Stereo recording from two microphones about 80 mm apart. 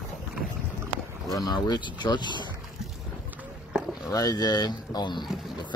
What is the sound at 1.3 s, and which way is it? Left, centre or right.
Speech, left.